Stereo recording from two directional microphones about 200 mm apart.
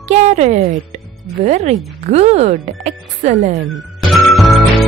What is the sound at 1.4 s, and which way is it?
Speech, 30° right (ahead or behind).